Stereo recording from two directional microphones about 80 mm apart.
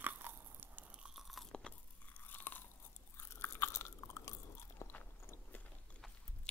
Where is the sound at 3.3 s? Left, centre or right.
Left.